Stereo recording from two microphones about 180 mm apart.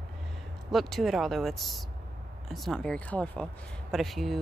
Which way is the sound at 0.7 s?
Centre (ahead or behind).